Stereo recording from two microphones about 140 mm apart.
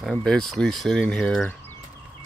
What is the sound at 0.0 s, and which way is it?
Speech, 5° left (ahead or behind).